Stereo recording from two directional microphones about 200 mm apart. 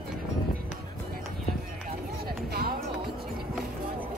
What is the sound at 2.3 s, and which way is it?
Music, 50° right (ahead or behind).